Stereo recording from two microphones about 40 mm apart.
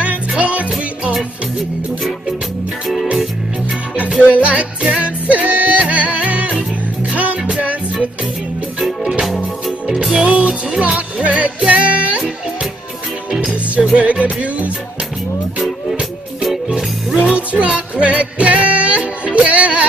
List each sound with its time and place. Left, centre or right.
0.4 s music: right
4.2 s music: right
7.5 s music: right
8.7 s music: centre
10.2 s music: right
13.9 s music: right
16.6 s music: centre
17.4 s music: right